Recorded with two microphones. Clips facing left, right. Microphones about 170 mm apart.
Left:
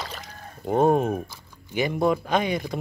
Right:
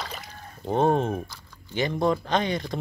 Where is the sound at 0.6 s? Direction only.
10° left (ahead or behind).